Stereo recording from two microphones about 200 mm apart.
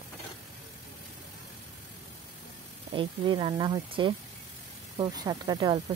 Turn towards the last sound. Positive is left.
turn(degrees=-20)  # may be behind; listen again after turning